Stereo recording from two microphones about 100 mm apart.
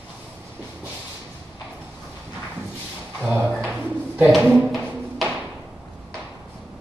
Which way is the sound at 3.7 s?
15° right (ahead or behind).